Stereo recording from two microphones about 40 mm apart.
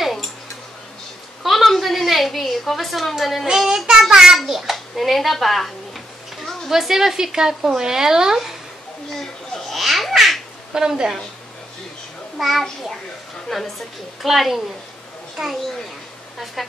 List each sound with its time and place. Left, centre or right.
1.4 s a sound: centre
3.5 s a woman's voice: centre
6.7 s a woman's voice: centre
9.1 s babbling: centre
10.7 s a woman's voice: centre
12.4 s a child's voice: centre
14.2 s a child's voice: centre
16.6 s a child's voice: centre